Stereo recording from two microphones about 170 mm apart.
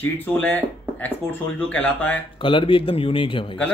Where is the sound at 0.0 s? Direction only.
10° left (ahead or behind).